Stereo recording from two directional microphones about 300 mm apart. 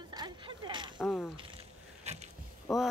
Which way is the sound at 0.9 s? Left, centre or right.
Centre.